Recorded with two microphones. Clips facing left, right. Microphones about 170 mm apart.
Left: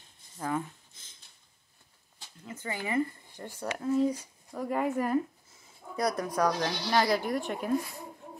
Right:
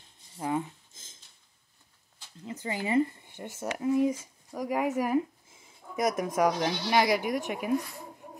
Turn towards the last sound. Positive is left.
turn(degrees=-10)  # may be behind; listen again after turning